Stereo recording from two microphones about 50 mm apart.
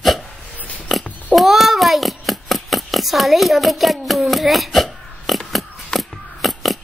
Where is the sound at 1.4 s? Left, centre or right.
Centre.